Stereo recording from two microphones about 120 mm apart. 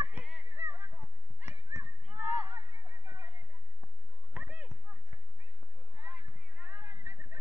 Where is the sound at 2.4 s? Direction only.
35° right (ahead or behind).